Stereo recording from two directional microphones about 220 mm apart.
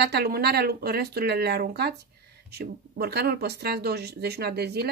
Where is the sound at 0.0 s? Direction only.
45° right (ahead or behind).